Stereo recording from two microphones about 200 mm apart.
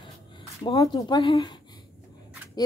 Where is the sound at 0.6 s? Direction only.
20° left (ahead or behind).